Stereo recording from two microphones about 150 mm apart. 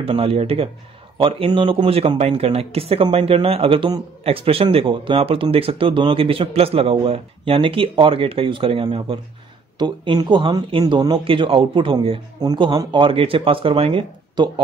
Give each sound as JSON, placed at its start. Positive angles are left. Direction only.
{"t": 0.0, "sound": "speech", "side_deg": -40}